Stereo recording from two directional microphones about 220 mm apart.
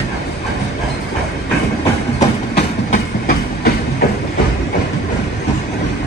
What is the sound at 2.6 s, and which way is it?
Train, 40° left (ahead or behind).